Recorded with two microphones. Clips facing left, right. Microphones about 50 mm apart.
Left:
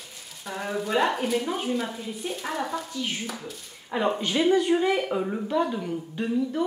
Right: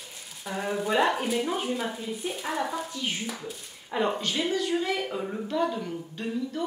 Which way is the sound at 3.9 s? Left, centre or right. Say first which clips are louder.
Left 2 dB; centre.